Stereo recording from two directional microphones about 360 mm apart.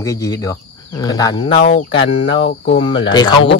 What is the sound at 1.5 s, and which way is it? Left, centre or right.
A man's voice, left.